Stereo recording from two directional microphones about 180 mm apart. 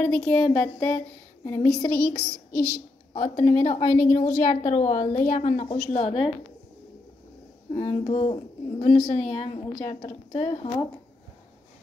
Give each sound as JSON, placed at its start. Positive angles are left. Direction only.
{"t": 0.0, "sound": "speech", "side_deg": 5}
{"t": 3.1, "sound": "a woman's voice", "side_deg": 35}
{"t": 7.7, "sound": "a woman's voice", "side_deg": 35}